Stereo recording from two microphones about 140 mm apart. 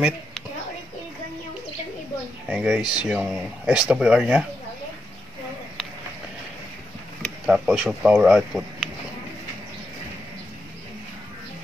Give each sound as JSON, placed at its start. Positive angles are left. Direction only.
{"t": 2.4, "sound": "speech", "side_deg": -5}
{"t": 2.8, "sound": "speech", "side_deg": 30}
{"t": 3.1, "sound": "speech", "side_deg": -5}
{"t": 7.4, "sound": "speech", "side_deg": -5}